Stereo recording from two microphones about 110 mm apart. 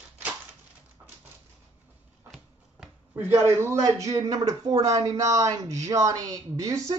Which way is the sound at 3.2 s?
25° right (ahead or behind).